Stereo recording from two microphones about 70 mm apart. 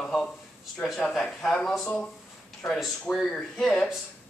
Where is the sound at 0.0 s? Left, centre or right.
Centre.